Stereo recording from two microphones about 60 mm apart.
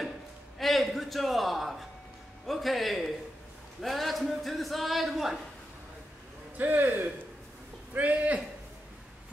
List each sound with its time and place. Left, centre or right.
0.6 s a sound: centre
2.4 s a man's voice: centre
6.6 s a man's voice: right